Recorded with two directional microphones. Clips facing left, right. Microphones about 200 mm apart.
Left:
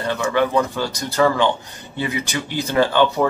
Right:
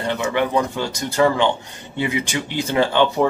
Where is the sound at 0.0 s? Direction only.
20° right (ahead or behind).